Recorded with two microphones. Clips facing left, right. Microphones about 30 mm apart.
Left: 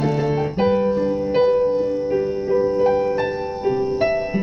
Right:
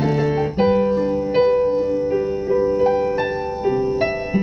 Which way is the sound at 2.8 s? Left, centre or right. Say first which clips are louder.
Even; centre.